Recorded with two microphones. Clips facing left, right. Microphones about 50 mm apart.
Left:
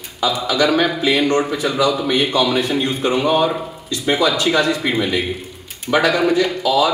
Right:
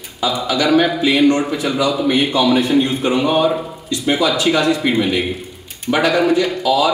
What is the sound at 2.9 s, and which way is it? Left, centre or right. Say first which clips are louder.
Speech: right 1 dB; centre.